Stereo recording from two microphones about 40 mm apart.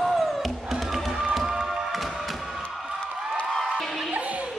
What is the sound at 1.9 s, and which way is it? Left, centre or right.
Music, centre.